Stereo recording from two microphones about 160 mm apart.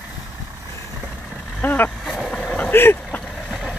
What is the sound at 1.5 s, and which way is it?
Vehicle, 10° left (ahead or behind).